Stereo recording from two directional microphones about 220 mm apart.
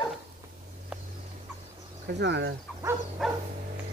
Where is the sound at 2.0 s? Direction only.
50° right (ahead or behind).